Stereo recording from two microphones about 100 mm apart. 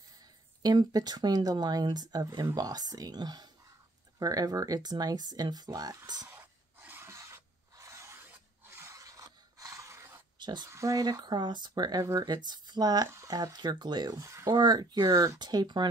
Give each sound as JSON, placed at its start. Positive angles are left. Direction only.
{"t": 0.6, "sound": "speech", "side_deg": -45}
{"t": 6.2, "sound": "rub", "side_deg": -20}
{"t": 8.3, "sound": "a sound", "side_deg": -25}
{"t": 10.4, "sound": "speech", "side_deg": -50}
{"t": 10.7, "sound": "speech", "side_deg": -35}